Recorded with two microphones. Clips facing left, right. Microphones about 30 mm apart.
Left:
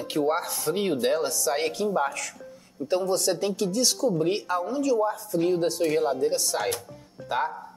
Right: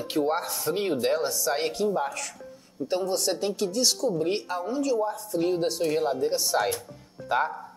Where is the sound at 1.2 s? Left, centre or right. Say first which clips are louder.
Left 1 dB; centre.